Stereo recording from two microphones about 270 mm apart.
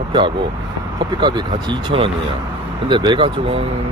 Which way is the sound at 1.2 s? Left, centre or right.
Centre.